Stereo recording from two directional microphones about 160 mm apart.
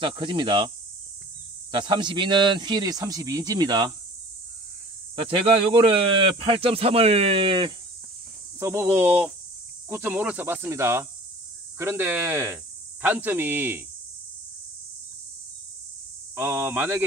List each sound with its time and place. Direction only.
0.0 s speech: 30° right (ahead or behind)
1.7 s speech: 30° right (ahead or behind)
5.3 s speech: 35° right (ahead or behind)
8.5 s speech: 15° right (ahead or behind)
16.3 s speech: 10° right (ahead or behind)